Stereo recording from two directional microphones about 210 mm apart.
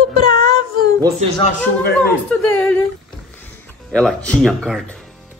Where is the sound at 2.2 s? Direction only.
10° left (ahead or behind).